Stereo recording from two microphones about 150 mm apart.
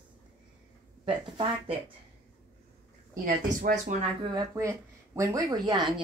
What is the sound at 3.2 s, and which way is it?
Speech, 65° right (ahead or behind).